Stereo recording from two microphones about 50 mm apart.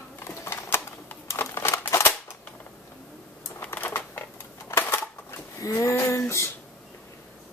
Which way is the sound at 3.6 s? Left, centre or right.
Left.